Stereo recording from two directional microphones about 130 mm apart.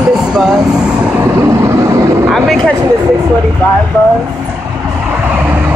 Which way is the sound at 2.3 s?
5° left (ahead or behind).